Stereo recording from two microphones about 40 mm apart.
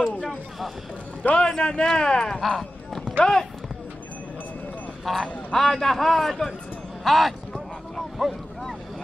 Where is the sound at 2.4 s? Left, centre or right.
Centre.